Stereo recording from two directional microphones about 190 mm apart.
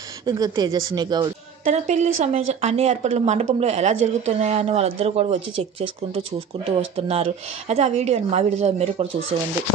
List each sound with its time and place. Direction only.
0.2 s speech: 20° right (ahead or behind)
1.6 s speech: 40° right (ahead or behind)